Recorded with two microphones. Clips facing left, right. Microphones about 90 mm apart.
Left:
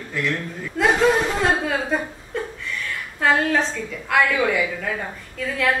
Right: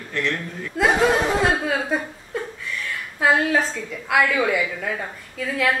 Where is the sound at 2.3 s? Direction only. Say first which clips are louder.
Left 1 dB; 5° right (ahead or behind).